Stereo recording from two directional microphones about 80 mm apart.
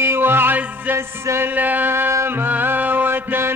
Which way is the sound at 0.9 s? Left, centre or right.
Right.